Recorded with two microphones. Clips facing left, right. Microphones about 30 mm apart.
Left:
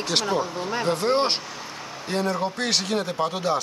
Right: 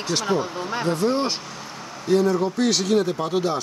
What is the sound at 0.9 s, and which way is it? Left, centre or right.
Speech, left.